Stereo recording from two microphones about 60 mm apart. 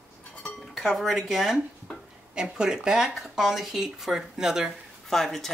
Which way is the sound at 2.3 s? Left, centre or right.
Centre.